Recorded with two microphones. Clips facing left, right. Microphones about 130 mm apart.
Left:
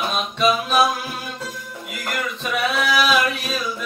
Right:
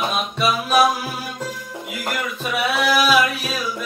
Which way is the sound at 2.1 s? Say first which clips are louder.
Even; 5° right (ahead or behind).